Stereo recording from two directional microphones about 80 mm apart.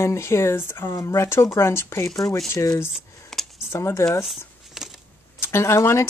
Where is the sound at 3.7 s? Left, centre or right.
Left.